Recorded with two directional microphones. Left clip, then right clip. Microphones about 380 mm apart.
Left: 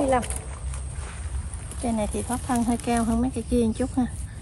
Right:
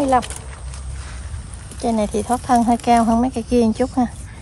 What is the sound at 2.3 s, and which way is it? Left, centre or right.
Speech, right.